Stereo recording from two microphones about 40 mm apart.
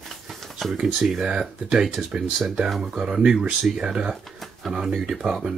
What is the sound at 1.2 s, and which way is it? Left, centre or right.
Speech, centre.